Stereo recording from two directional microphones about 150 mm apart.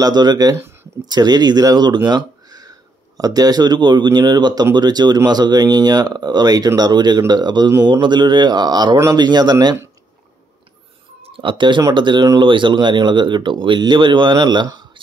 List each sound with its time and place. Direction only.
0.0 s speech: 25° right (ahead or behind)
2.0 s a sound: 25° right (ahead or behind)
3.2 s speech: 25° right (ahead or behind)
11.2 s speech: 35° right (ahead or behind)